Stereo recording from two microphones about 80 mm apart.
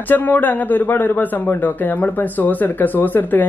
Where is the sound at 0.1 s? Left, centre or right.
Left.